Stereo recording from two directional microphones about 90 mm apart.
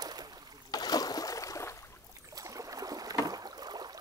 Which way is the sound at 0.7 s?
45° left (ahead or behind).